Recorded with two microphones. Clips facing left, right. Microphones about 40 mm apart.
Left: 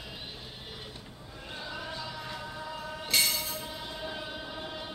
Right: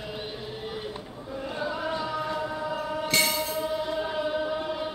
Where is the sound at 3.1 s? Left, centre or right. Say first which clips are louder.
Right 3 dB; centre.